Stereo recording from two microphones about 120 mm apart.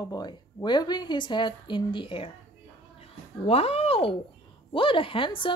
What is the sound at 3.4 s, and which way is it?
A woman's voice, 60° left (ahead or behind).